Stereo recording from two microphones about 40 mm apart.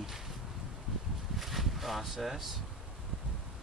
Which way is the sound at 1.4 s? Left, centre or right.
Centre.